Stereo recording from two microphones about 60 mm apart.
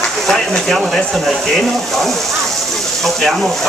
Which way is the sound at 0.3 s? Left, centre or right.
Centre.